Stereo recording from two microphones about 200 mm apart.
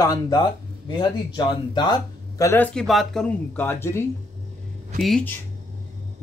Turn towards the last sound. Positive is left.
turn(degrees=0)  # may be behind; listen again after turning